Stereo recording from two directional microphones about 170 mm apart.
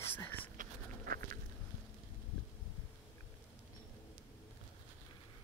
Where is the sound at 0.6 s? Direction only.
60° right (ahead or behind).